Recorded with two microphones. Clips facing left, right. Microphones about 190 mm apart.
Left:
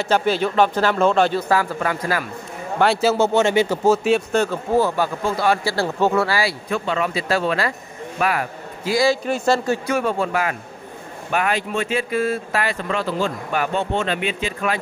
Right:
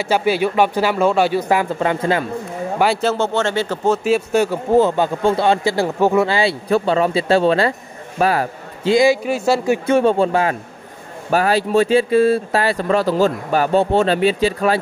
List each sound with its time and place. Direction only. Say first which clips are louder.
0.0 s speech: right 2 dB; 10° right (ahead or behind)
2.8 s speech: left 1 dB; centre (ahead or behind); by 6.5 s 20° right (ahead or behind)
6.7 s speech: right 9 dB; 35° right (ahead or behind); by 9.8 s 10° right (ahead or behind)
9.8 s speech: right 7 dB; 30° right (ahead or behind)